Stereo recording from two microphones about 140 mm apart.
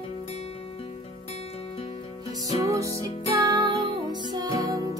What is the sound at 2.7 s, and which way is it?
Music, 20° right (ahead or behind).